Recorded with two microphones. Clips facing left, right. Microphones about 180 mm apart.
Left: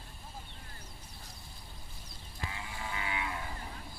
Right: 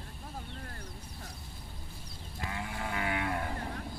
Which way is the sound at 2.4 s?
55° right (ahead or behind).